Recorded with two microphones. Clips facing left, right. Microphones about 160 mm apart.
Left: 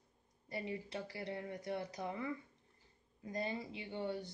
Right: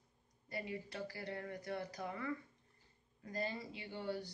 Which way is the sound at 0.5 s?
25° left (ahead or behind).